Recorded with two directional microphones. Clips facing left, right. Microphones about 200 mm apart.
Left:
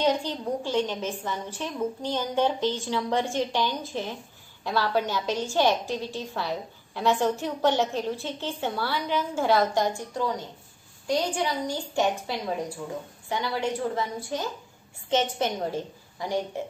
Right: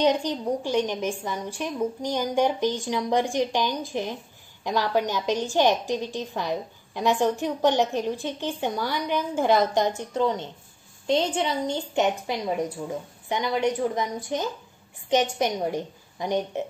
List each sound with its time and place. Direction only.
0.0 s a woman's voice: 15° right (ahead or behind)